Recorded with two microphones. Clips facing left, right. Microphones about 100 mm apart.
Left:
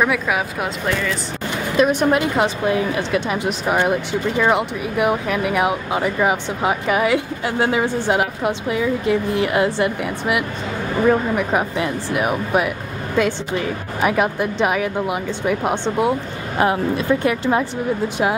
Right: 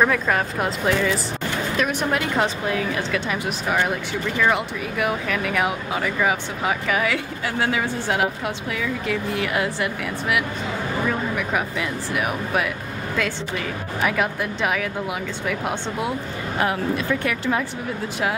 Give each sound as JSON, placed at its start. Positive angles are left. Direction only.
{"t": 0.0, "sound": "speech", "side_deg": 5}
{"t": 1.8, "sound": "speech", "side_deg": 20}